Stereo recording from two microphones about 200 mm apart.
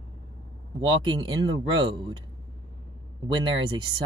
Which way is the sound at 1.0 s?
25° right (ahead or behind).